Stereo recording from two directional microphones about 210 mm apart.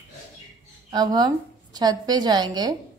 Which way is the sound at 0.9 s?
20° right (ahead or behind).